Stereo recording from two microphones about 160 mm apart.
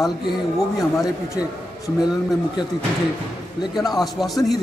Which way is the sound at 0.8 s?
Centre (ahead or behind).